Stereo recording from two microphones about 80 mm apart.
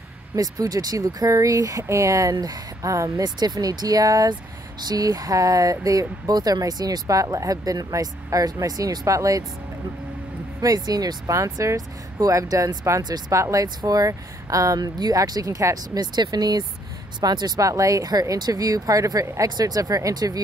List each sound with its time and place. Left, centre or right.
0.4 s speech: right
2.3 s speech: right
10.6 s speech: right
13.7 s speech: right
17.6 s speech: right